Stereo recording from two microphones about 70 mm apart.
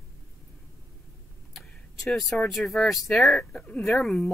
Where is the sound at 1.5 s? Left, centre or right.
Centre.